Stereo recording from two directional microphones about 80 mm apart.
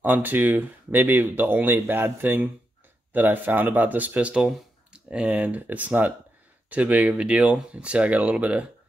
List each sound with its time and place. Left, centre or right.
0.0 s speech: right